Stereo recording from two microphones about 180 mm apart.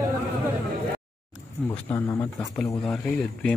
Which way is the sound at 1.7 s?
25° left (ahead or behind).